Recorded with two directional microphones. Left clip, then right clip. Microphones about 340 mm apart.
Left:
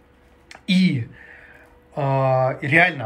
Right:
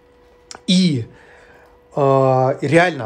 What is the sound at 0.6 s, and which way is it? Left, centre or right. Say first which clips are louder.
Speech: right 3 dB; centre.